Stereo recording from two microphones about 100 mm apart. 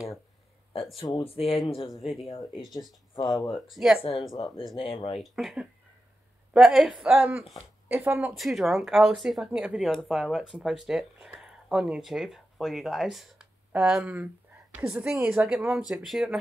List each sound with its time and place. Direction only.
1.2 s speech: 75° left (ahead or behind)
1.8 s speech: centre (ahead or behind)
4.7 s speech: 65° left (ahead or behind)
5.2 s a woman's voice: centre (ahead or behind); by 8.4 s 15° right (ahead or behind)
8.4 s a woman's voice: centre (ahead or behind)
9.8 s a woman's voice: centre (ahead or behind)